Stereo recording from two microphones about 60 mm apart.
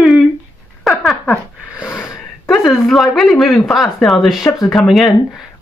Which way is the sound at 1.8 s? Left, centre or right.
Left.